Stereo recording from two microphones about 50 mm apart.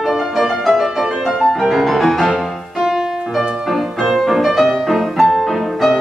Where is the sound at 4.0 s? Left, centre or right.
Centre.